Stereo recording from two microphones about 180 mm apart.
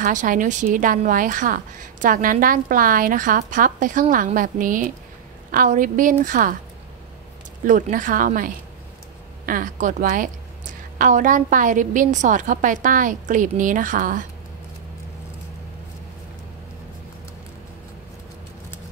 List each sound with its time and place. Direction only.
0.0 s a woman's voice: 50° right (ahead or behind)
7.6 s a woman's voice: 45° right (ahead or behind)